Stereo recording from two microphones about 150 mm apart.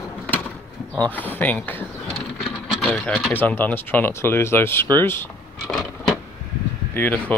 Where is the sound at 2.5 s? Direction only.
Centre (ahead or behind).